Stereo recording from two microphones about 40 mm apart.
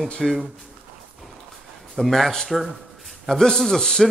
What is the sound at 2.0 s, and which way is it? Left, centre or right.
Speech, centre.